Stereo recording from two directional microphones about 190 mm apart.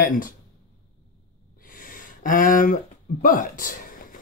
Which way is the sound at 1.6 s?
45° left (ahead or behind).